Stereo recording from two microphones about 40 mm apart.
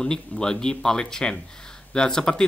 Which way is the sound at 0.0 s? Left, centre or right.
Centre.